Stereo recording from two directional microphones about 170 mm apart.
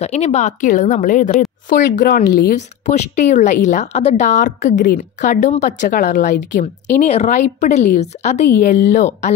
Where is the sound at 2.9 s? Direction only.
40° left (ahead or behind).